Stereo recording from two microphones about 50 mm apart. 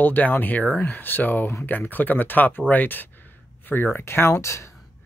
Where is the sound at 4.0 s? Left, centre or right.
Left.